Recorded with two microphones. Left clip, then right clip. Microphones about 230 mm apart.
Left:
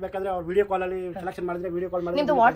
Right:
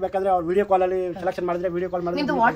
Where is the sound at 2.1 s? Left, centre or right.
Left.